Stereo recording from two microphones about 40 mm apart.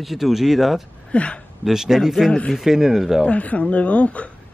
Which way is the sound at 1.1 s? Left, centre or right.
Left.